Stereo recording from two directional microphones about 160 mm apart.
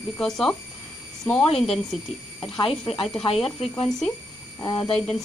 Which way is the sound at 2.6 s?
35° left (ahead or behind).